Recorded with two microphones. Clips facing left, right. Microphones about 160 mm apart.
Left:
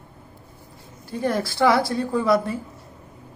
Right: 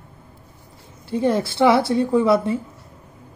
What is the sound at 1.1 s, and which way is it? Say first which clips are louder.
A woman's voice: right 4 dB; 25° right (ahead or behind).